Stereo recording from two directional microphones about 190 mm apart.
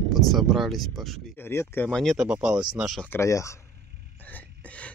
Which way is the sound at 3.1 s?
15° left (ahead or behind).